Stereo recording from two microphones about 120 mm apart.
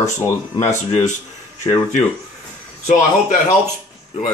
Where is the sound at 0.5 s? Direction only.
70° left (ahead or behind).